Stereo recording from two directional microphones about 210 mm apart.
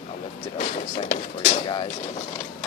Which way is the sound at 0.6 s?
40° left (ahead or behind).